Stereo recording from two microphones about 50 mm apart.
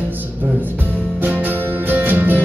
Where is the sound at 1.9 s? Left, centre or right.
Right.